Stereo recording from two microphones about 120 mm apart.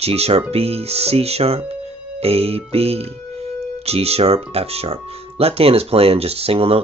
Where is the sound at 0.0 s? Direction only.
60° right (ahead or behind).